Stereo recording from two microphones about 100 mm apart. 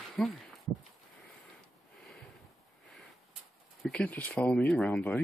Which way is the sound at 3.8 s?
10° left (ahead or behind).